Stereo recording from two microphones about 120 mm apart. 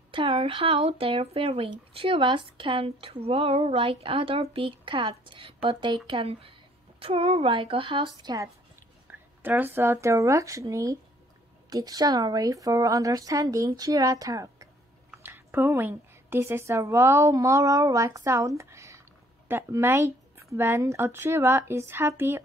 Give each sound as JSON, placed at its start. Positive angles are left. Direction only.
{"t": 0.1, "sound": "speech", "side_deg": -45}
{"t": 9.4, "sound": "a woman's voice", "side_deg": -15}
{"t": 15.2, "sound": "a woman's voice", "side_deg": -20}